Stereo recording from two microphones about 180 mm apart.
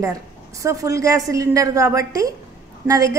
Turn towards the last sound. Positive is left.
turn(degrees=-20)  # may be behind; listen again after turning